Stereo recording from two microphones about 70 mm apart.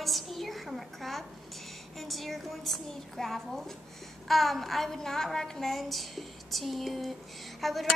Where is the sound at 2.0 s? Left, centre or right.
Centre.